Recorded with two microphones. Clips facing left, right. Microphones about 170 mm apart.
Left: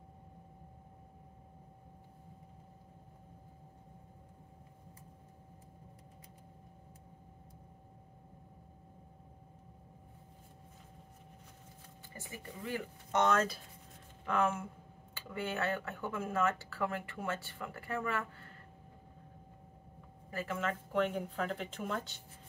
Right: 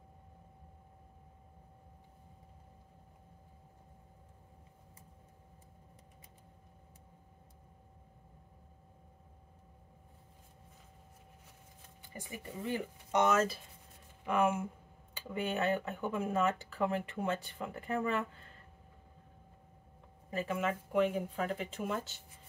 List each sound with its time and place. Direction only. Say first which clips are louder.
12.1 s speech: right 3 dB; 20° right (ahead or behind)
20.2 s speech: right 3 dB; 15° right (ahead or behind)